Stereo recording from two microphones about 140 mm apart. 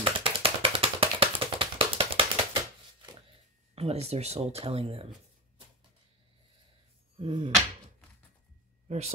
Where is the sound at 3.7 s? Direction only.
45° right (ahead or behind).